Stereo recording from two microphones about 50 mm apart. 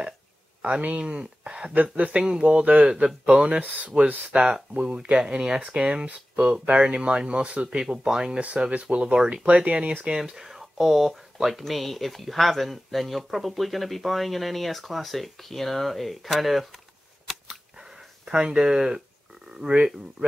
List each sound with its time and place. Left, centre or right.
0.6 s speech: right
4.1 s speech: right
4.4 s speech: centre
17.5 s a sound: centre
19.5 s speech: centre